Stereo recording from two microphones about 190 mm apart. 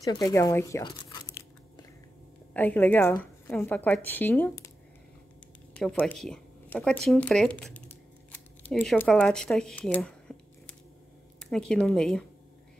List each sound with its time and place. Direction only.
0.0 s crunch: 20° left (ahead or behind)
2.5 s a woman's voice: 10° left (ahead or behind)
5.8 s speech: 10° left (ahead or behind)
11.3 s speech: 5° left (ahead or behind)